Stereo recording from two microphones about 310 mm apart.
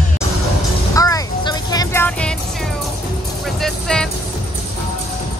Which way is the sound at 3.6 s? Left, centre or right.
Centre.